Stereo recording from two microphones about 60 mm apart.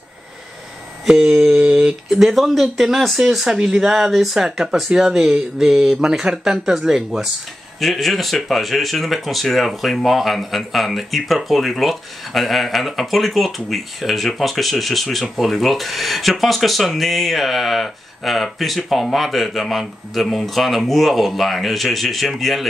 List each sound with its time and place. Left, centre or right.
1.0 s speech: centre